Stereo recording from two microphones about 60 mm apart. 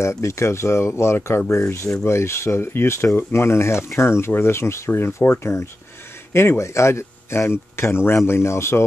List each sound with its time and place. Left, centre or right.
0.0 s speech: left